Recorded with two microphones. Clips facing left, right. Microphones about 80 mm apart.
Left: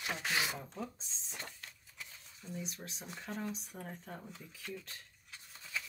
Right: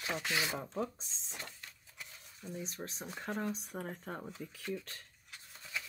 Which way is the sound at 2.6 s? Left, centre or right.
Right.